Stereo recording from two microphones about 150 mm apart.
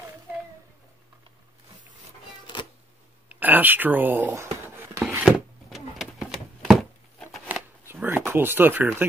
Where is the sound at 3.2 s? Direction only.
10° right (ahead or behind).